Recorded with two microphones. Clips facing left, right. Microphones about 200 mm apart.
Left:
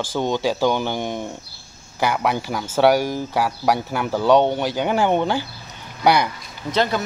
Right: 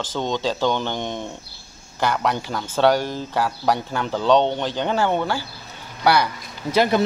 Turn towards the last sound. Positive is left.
turn(degrees=-15)  # may be behind; listen again after turning